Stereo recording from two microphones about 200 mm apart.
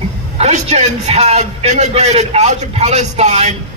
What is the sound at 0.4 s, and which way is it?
A man's voice, 35° right (ahead or behind).